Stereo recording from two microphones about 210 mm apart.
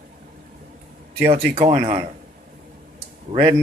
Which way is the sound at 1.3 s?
30° right (ahead or behind).